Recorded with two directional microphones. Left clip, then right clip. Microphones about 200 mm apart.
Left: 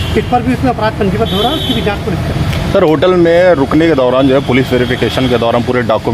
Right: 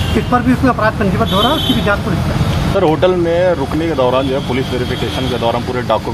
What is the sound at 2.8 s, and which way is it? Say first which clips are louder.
Speech: left 4 dB; 55° left (ahead or behind).